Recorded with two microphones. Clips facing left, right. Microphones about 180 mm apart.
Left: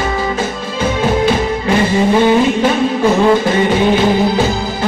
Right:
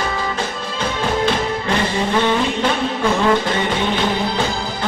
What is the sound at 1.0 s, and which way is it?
Music, 10° left (ahead or behind).